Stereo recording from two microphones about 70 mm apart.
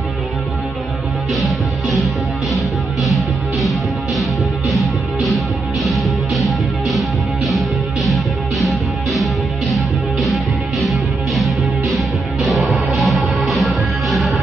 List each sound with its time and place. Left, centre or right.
2.5 s music: centre